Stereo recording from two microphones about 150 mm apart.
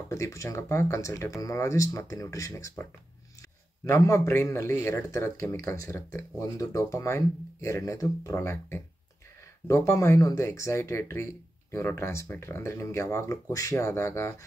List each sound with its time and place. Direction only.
0.1 s speech: 20° left (ahead or behind)
3.9 s speech: 20° left (ahead or behind)